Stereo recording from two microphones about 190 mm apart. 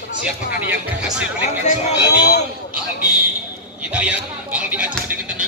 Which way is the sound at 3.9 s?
5° right (ahead or behind).